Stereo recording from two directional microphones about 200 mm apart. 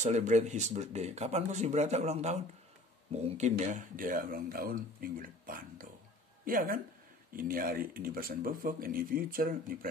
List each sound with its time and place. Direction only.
0.0 s speech: 35° right (ahead or behind)